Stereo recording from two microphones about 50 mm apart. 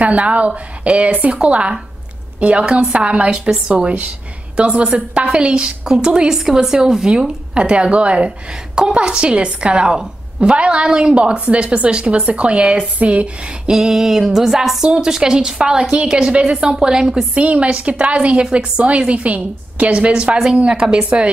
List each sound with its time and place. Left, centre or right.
0.0 s a woman's voice: right
13.7 s a woman's voice: centre
17.3 s a woman's voice: right